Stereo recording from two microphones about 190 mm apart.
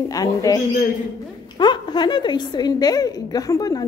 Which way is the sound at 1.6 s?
25° left (ahead or behind).